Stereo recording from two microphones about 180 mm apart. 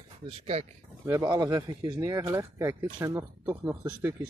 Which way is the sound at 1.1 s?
20° right (ahead or behind).